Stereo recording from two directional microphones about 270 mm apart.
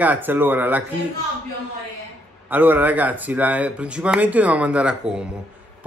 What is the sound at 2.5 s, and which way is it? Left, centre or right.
Speech, centre.